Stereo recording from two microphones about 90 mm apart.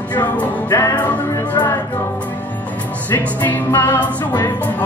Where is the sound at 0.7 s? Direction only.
35° left (ahead or behind).